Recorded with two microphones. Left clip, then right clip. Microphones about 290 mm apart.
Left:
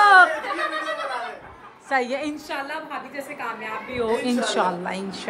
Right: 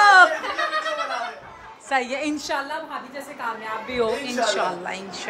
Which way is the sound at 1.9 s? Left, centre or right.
Centre.